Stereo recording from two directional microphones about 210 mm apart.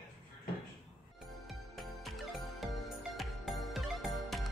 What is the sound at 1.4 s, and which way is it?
Music, centre (ahead or behind).